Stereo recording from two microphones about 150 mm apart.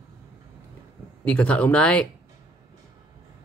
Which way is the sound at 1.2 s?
10° left (ahead or behind).